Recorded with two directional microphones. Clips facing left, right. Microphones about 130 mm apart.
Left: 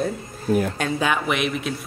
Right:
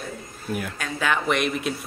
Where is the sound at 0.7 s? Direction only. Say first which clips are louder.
Left 5 dB; 25° left (ahead or behind).